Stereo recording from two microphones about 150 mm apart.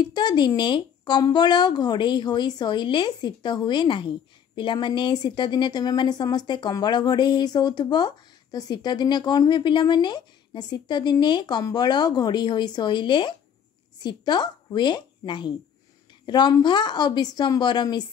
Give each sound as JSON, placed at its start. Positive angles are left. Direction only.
{"t": 0.0, "sound": "a woman's voice", "side_deg": 30}